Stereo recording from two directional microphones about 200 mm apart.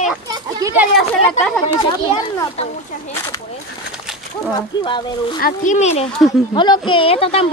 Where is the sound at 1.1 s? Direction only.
5° left (ahead or behind).